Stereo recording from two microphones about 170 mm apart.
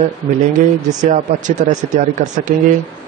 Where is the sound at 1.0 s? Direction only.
45° right (ahead or behind).